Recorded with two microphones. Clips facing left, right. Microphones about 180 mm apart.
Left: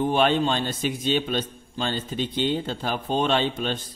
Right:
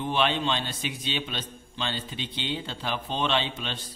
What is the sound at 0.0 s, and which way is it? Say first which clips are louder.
A man's voice: left 5 dB; 45° left (ahead or behind).